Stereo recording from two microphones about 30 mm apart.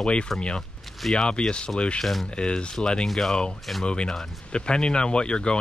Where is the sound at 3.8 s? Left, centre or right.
Left.